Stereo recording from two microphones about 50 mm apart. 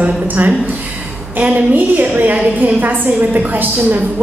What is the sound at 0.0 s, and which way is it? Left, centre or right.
A woman's voice, right.